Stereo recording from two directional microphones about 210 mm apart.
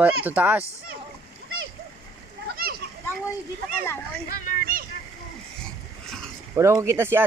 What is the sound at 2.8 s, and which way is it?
Children playing, 50° right (ahead or behind).